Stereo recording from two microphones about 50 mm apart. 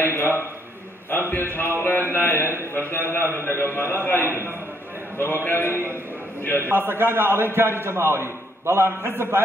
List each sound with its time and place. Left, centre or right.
0.0 s a sound: left
2.9 s a man's voice: left
6.6 s a man's voice: right